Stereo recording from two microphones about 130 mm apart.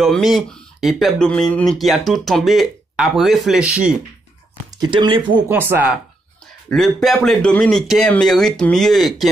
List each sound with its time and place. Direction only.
0.0 s speech: centre (ahead or behind)
4.7 s speech: 35° right (ahead or behind)
5.5 s speech: 15° right (ahead or behind)
6.7 s speech: centre (ahead or behind)